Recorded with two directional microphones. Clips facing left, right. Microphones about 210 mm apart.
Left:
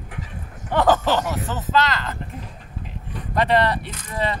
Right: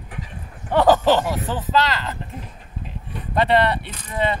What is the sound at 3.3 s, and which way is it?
Speech, 25° right (ahead or behind).